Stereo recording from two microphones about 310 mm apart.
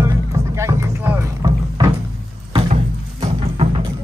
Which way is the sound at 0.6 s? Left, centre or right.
Centre.